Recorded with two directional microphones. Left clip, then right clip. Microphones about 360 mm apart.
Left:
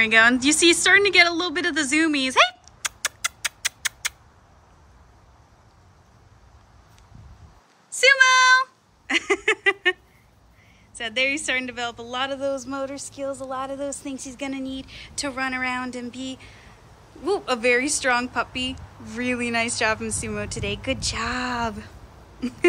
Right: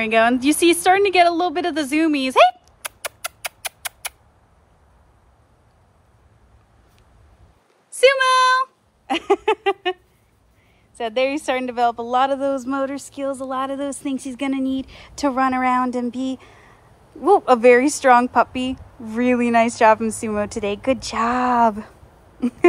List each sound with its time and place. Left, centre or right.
0.0 s a woman's voice: centre
7.9 s a sound: centre
11.0 s a woman's voice: centre